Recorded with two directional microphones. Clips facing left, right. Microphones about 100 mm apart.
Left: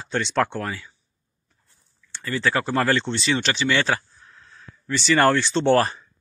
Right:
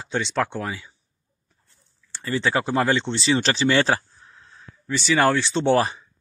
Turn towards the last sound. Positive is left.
turn(degrees=-10)  # may be behind; listen again after turning